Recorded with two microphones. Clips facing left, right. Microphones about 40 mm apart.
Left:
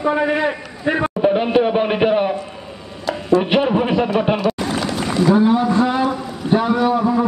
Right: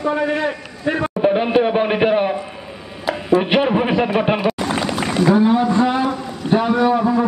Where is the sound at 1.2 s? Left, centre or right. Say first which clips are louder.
Even; centre.